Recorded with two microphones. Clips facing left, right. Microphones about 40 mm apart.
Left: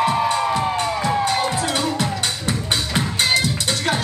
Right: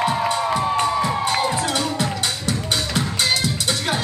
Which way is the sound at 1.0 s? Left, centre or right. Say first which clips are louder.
Left 1 dB; centre.